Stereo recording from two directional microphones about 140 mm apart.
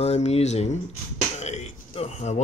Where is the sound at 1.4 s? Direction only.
50° left (ahead or behind).